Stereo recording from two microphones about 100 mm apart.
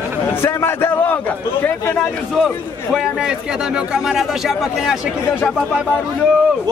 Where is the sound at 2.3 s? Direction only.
Centre (ahead or behind).